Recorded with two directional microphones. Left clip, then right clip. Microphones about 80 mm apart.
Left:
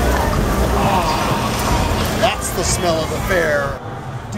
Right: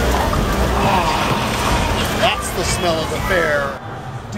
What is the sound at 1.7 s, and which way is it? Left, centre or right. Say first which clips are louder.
Vehicle: right 1 dB; centre.